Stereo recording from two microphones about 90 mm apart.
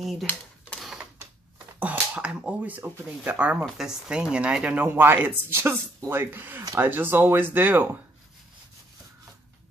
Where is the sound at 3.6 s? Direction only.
5° right (ahead or behind); by 8.0 s 20° right (ahead or behind).